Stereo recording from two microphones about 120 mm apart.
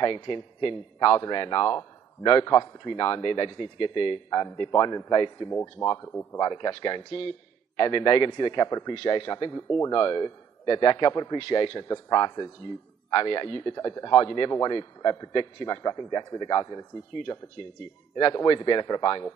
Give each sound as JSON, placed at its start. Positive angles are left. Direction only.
{"t": 0.0, "sound": "a man's voice", "side_deg": 40}
{"t": 5.5, "sound": "a man's voice", "side_deg": 20}
{"t": 9.5, "sound": "a man's voice", "side_deg": 25}
{"t": 18.1, "sound": "a man's voice", "side_deg": 35}